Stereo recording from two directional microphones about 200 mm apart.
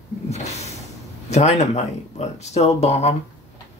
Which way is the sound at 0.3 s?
30° left (ahead or behind).